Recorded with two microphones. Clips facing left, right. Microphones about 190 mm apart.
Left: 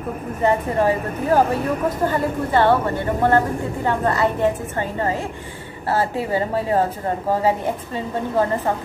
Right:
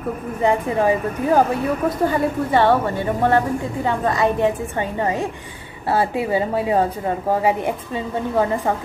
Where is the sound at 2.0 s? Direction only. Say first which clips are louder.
Right 3 dB; 15° right (ahead or behind).